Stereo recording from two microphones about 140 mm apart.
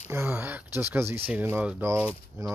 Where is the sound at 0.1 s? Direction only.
15° right (ahead or behind).